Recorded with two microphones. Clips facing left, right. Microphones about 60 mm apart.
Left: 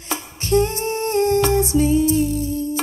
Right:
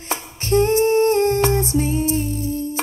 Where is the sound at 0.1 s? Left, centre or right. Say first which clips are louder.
Even; right.